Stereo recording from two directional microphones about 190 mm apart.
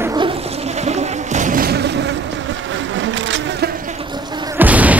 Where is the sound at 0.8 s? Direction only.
40° right (ahead or behind).